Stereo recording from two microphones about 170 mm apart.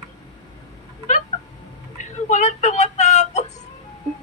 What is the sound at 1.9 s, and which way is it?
Music, 45° left (ahead or behind).